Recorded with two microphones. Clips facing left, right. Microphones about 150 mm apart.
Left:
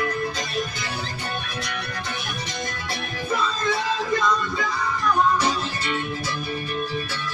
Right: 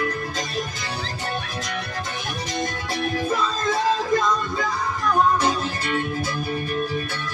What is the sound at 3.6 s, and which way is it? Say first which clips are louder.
Music: right 5 dB; 45° right (ahead or behind).